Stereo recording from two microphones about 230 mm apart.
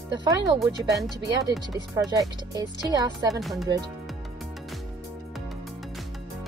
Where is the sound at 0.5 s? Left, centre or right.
Centre.